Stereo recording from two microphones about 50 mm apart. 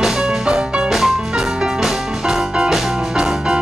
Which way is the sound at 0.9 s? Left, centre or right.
Centre.